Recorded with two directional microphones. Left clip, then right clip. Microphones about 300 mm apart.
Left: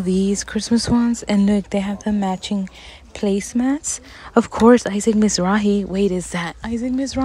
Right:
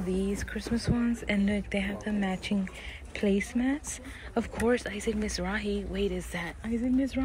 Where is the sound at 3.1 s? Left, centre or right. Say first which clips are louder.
Left 7 dB; centre.